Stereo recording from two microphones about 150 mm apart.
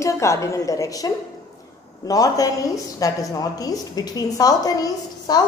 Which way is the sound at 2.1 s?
25° left (ahead or behind).